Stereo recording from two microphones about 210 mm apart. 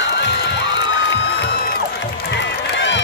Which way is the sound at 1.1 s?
55° left (ahead or behind).